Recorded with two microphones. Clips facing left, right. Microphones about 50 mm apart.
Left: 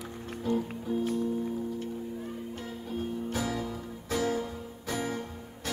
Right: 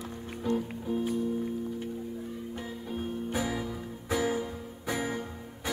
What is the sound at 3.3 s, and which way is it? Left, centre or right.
Music, centre.